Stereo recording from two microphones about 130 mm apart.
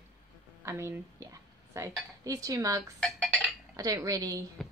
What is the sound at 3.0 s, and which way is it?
Dishes, 5° left (ahead or behind).